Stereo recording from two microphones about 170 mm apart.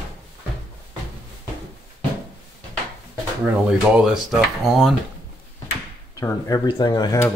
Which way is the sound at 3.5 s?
5° right (ahead or behind).